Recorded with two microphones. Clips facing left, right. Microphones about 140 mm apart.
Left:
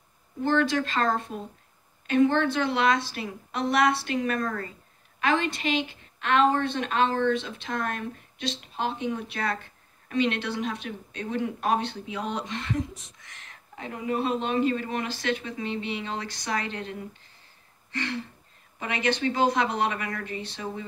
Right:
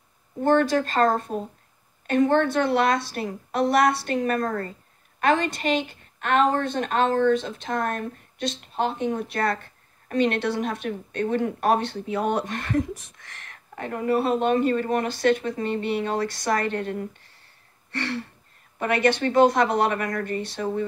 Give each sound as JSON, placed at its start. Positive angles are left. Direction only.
{"t": 0.4, "sound": "a woman's voice", "side_deg": -50}
{"t": 4.0, "sound": "a woman's voice", "side_deg": -40}